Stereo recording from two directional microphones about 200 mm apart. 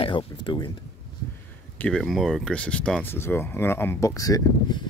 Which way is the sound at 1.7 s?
5° left (ahead or behind).